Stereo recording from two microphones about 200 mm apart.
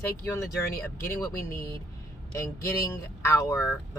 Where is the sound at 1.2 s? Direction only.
15° left (ahead or behind).